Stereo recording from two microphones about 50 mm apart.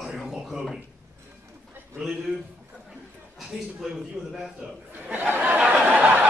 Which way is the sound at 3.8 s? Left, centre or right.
Centre.